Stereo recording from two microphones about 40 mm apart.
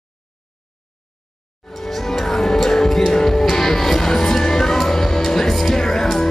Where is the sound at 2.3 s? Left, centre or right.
Centre.